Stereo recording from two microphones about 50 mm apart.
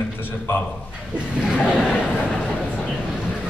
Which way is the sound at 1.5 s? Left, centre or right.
Left.